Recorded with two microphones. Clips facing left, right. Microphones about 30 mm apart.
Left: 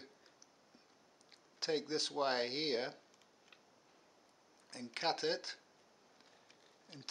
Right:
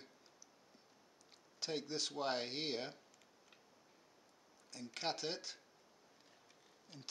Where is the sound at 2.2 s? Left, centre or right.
Left.